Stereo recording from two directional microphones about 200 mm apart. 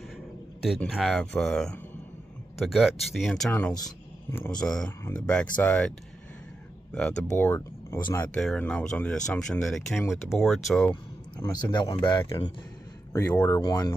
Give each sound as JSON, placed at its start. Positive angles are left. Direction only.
{"t": 0.6, "sound": "speech", "side_deg": 0}
{"t": 4.8, "sound": "speech", "side_deg": 20}
{"t": 5.3, "sound": "speech", "side_deg": 5}
{"t": 8.4, "sound": "speech", "side_deg": 5}
{"t": 11.3, "sound": "speech", "side_deg": 20}